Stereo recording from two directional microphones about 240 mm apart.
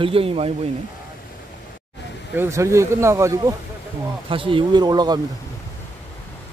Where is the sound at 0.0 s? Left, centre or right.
Right.